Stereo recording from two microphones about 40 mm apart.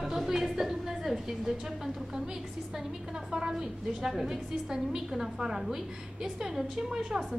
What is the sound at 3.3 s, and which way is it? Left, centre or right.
A woman's voice, centre.